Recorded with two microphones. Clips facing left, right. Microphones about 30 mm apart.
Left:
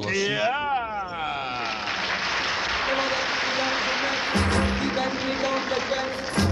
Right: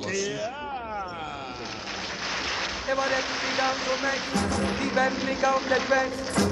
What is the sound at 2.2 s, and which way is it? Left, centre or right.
Applause, centre.